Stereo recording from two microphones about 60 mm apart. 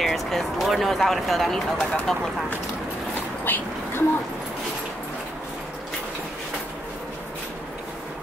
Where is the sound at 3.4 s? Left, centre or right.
Left.